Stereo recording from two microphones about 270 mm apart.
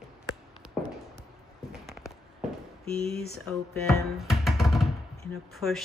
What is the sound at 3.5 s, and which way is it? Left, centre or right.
A woman's voice, centre.